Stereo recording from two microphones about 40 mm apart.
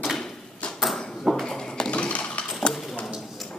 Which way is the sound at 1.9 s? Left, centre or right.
Left.